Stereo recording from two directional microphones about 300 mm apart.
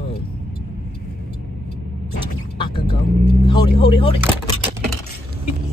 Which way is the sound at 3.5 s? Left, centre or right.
Centre.